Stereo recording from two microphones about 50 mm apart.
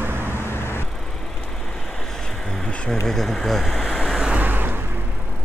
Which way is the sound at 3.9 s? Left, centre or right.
Centre.